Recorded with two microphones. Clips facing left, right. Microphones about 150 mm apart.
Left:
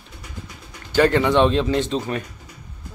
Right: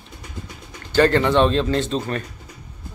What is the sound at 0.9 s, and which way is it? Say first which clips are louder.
A man's voice: even; 10° left (ahead or behind).